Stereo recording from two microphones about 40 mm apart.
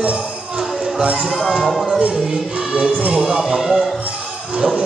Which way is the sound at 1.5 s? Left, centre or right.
Centre.